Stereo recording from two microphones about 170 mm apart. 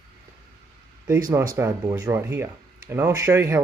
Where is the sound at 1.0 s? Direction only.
15° right (ahead or behind).